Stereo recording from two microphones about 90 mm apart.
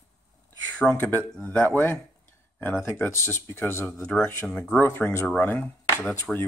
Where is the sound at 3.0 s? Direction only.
25° left (ahead or behind).